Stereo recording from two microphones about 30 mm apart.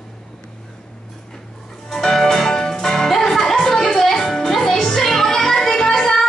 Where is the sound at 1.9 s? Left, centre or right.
Left.